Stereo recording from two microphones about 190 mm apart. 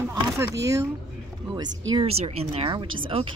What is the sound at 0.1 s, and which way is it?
Speech, 15° right (ahead or behind).